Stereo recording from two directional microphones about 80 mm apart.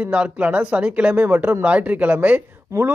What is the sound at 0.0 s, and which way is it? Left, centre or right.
A man's voice, centre.